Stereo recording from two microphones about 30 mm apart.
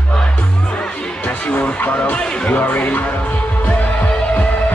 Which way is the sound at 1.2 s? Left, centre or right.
Left.